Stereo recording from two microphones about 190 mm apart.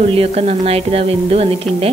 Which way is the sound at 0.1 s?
35° right (ahead or behind).